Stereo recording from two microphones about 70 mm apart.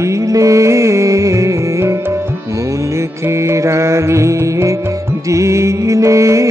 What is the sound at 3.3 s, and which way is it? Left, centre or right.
Music, right.